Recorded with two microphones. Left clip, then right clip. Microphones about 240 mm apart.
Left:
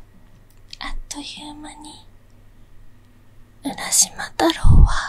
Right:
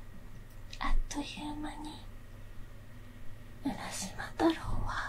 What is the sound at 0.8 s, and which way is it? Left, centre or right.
Whispering, left.